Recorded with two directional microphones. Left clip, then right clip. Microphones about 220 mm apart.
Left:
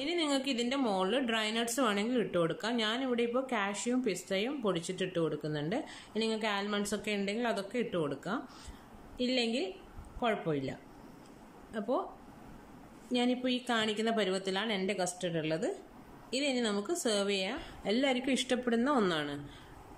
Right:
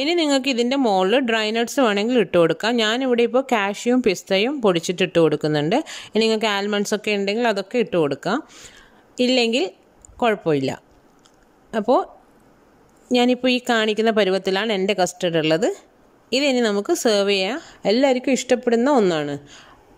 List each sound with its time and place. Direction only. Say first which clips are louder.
0.0 s speech: right 13 dB; 45° right (ahead or behind)
13.1 s speech: right 14 dB; 45° right (ahead or behind)